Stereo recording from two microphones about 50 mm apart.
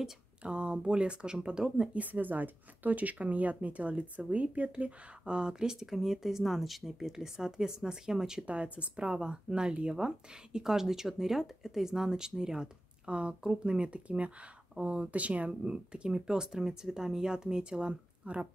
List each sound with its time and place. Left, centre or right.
0.4 s speech: right
2.0 s speech: right; by 8.5 s centre
8.5 s speech: right